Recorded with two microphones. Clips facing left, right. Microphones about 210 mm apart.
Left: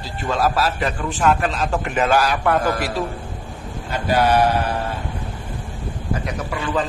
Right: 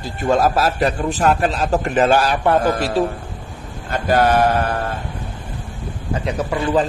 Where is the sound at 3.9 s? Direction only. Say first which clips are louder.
Right 2 dB; 45° right (ahead or behind).